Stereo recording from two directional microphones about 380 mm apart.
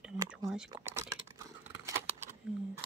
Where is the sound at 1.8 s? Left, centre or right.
Centre.